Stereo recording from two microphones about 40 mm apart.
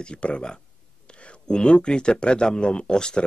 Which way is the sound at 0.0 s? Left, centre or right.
Left.